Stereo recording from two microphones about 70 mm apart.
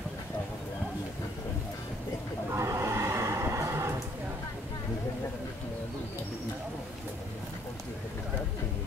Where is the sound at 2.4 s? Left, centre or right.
Right.